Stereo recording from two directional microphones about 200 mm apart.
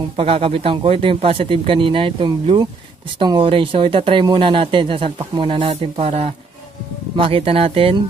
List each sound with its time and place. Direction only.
0.1 s speech: 30° right (ahead or behind)